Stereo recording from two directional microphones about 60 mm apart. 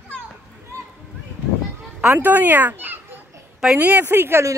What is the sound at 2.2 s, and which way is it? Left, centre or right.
Speech, right.